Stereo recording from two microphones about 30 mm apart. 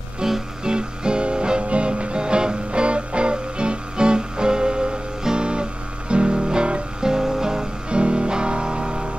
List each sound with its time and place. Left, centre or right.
0.2 s music: right
7.1 s music: centre
7.9 s music: right